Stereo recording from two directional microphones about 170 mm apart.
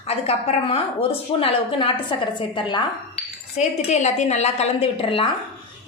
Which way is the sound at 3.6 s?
40° left (ahead or behind).